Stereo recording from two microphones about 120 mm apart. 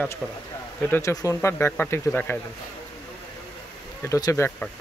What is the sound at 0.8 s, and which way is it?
Speech, 15° left (ahead or behind).